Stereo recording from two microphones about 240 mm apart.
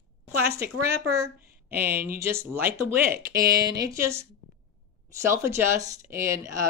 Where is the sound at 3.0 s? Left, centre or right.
Right.